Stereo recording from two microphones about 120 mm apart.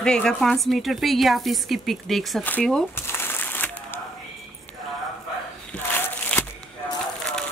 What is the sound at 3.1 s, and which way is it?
Crushing, 20° left (ahead or behind).